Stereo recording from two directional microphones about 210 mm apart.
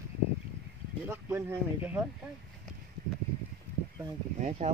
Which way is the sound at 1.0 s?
10° right (ahead or behind).